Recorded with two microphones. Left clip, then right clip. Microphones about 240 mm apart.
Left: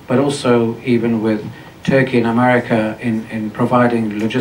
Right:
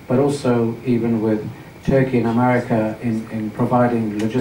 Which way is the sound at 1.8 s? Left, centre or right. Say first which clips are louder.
Left 3 dB; left.